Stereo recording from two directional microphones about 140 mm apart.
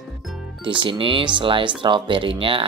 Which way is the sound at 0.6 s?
35° right (ahead or behind).